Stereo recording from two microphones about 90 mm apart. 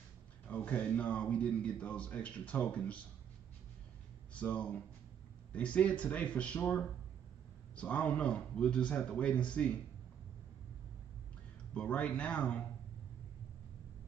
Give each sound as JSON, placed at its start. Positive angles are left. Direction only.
{"t": 0.5, "sound": "a man's voice", "side_deg": 15}
{"t": 4.3, "sound": "a man's voice", "side_deg": 15}
{"t": 11.7, "sound": "a man's voice", "side_deg": 15}